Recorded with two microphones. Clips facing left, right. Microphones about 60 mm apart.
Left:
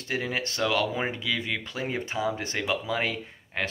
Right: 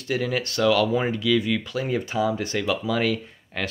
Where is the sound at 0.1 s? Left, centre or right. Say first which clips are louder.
Right 5 dB; left.